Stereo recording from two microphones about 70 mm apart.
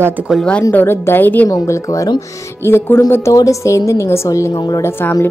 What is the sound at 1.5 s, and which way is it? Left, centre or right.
Speech, left.